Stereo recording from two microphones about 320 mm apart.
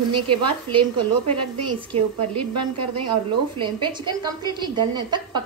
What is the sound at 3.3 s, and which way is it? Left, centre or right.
A woman's voice, centre.